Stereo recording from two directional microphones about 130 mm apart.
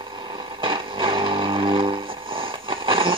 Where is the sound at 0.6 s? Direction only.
40° right (ahead or behind).